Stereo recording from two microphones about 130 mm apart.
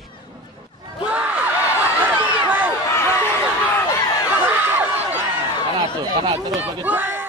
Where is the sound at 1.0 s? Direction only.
10° right (ahead or behind).